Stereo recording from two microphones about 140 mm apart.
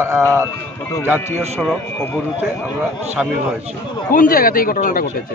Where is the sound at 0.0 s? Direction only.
20° right (ahead or behind).